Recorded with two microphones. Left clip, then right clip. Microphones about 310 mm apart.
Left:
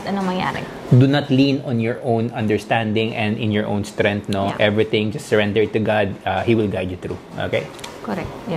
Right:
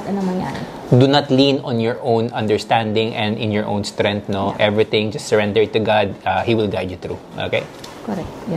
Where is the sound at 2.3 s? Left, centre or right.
Right.